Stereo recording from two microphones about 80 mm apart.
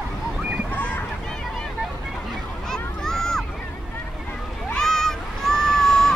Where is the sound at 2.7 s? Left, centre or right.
Centre.